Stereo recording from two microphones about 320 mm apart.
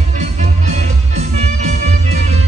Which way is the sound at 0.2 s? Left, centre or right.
Right.